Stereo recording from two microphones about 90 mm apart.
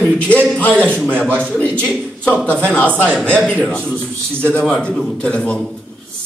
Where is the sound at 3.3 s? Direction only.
15° left (ahead or behind).